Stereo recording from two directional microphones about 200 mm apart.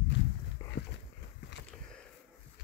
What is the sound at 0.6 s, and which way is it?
Dog, 15° left (ahead or behind).